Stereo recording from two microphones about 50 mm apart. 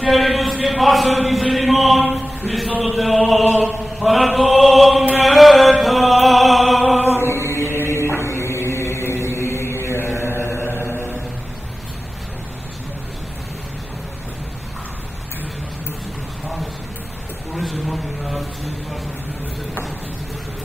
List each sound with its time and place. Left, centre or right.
0.0 s chant: centre
5.2 s music: centre
7.2 s chant: left
17.6 s a sound: centre